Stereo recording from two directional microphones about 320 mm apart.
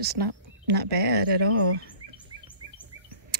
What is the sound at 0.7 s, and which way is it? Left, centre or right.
Speech, right.